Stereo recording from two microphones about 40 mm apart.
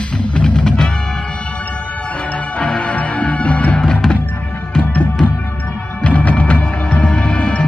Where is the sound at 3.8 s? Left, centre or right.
Centre.